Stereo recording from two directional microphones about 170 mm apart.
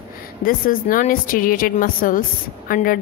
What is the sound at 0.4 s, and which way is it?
A woman's voice, 55° left (ahead or behind).